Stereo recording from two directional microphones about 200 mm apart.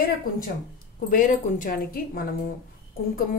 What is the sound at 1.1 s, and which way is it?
Speech, 40° left (ahead or behind).